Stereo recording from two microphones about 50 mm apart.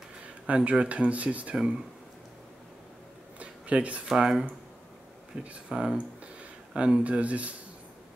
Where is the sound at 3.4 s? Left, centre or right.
Right.